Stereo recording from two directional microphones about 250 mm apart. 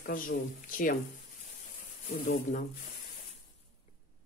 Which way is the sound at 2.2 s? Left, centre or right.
Left.